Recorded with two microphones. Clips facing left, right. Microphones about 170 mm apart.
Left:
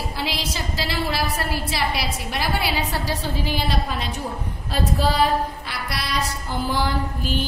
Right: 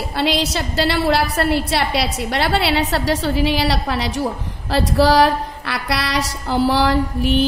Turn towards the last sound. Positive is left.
turn(degrees=-90)